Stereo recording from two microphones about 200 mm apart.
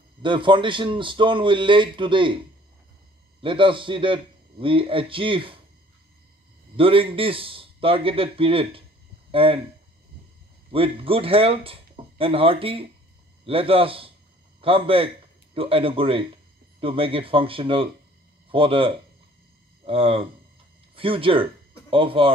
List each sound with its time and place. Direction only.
0.2 s a man's voice: 25° right (ahead or behind)
6.8 s a man's voice: 25° right (ahead or behind)
10.7 s a man's voice: 30° right (ahead or behind)